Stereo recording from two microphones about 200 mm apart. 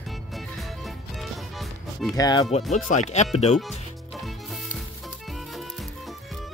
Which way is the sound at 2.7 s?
35° left (ahead or behind).